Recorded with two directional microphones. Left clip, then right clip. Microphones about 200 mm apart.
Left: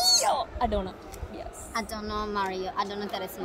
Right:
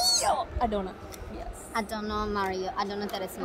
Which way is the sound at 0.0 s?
15° left (ahead or behind).